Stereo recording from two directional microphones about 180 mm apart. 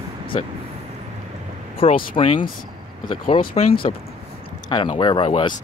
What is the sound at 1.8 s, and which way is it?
Speech, 30° left (ahead or behind).